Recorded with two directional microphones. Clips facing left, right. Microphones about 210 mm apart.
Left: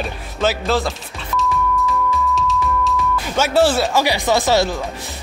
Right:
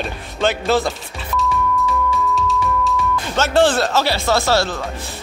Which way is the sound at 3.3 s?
10° left (ahead or behind).